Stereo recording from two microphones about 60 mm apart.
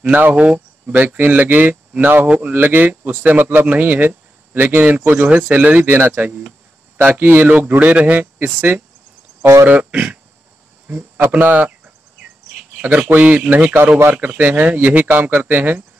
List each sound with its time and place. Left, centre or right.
0.0 s a man's voice: right
5.9 s speech: right
7.4 s a man's voice: right
9.4 s speech: right
9.7 s a man's voice: right
11.3 s a man's voice: right